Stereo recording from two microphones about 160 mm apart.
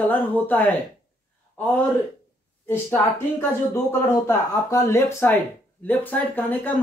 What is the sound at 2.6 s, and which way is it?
Speech, 15° left (ahead or behind).